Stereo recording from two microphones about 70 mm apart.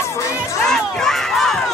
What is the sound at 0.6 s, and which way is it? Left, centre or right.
Crowd, centre.